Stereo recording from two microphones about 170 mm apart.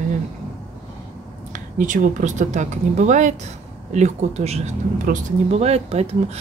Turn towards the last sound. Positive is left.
turn(degrees=-40)  # may be behind; listen again after turning